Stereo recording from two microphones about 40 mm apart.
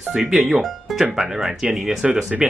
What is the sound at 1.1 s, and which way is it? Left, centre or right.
Speech, centre.